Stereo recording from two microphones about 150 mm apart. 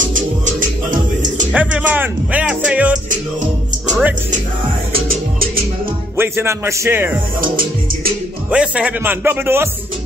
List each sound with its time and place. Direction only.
0.0 s music: 60° right (ahead or behind)
1.5 s speech: 10° right (ahead or behind)
5.0 s music: 75° right (ahead or behind)
6.1 s a man's voice: 15° right (ahead or behind)
8.5 s a man's voice: 10° right (ahead or behind)